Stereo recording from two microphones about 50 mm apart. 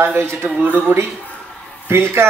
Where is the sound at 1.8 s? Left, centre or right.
Right.